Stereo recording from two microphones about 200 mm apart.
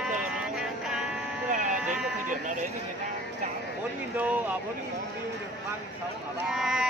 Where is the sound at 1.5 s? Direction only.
40° right (ahead or behind).